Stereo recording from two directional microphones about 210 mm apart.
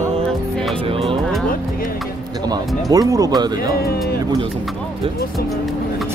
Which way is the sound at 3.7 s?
45° left (ahead or behind).